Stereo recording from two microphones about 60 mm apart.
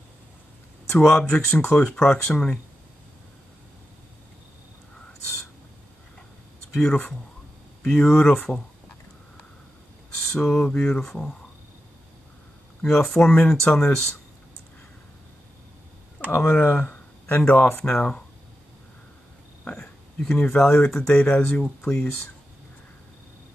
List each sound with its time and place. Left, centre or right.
0.8 s speech: centre
6.7 s speech: centre
10.1 s speech: centre
12.8 s speech: centre
16.3 s speech: left
17.4 s speech: centre
19.7 s speech: centre